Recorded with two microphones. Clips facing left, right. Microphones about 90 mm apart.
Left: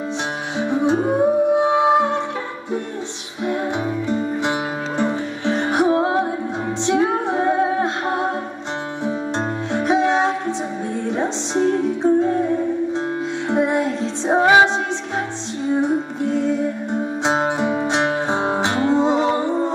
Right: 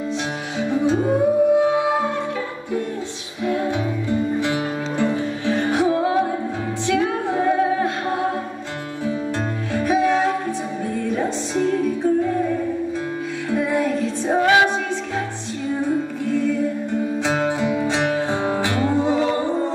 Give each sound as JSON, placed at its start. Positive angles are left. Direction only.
{"t": 0.6, "sound": "music", "side_deg": 20}
{"t": 3.4, "sound": "music", "side_deg": 20}
{"t": 9.7, "sound": "music", "side_deg": 20}
{"t": 15.7, "sound": "music", "side_deg": 20}